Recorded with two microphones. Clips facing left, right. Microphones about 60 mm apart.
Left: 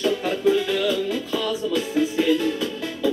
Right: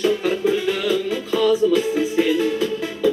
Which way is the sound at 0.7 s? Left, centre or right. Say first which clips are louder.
Right 2 dB; centre.